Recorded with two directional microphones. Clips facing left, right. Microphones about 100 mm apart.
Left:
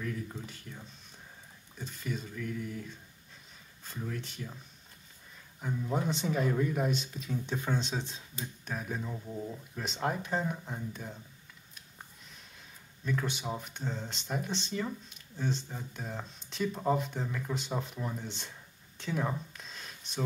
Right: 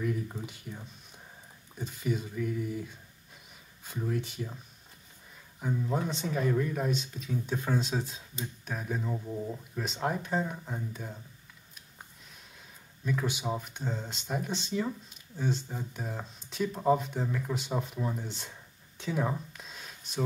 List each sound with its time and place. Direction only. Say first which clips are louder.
0.0 s speech: right 5 dB; 15° right (ahead or behind)
3.8 s speech: right 6 dB; 10° right (ahead or behind)
5.6 s speech: right 2 dB; 5° right (ahead or behind)
9.1 s speech: right 4 dB; 15° right (ahead or behind)
9.8 s speech: right 1 dB; centre (ahead or behind)
13.0 s speech: right 2 dB; 5° right (ahead or behind)
18.9 s a sound: right 2 dB; 5° right (ahead or behind)